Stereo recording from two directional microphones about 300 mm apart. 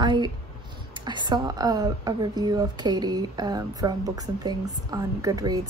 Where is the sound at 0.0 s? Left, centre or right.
Centre.